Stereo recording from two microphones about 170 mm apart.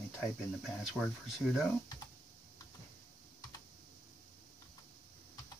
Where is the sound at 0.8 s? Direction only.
Centre (ahead or behind).